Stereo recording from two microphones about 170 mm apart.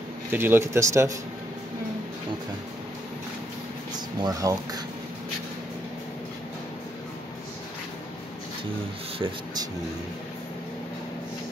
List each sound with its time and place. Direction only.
0.3 s speech: 15° right (ahead or behind)
4.2 s speech: 20° right (ahead or behind)